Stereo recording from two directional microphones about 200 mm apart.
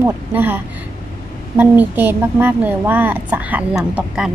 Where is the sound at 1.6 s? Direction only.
10° right (ahead or behind).